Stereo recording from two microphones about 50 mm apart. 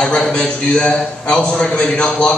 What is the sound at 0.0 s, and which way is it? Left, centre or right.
A man's voice, centre.